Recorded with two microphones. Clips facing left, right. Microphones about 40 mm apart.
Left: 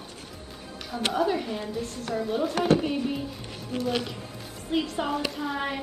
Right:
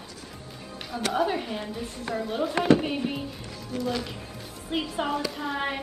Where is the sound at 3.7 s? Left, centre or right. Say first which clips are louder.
Left 1 dB; left.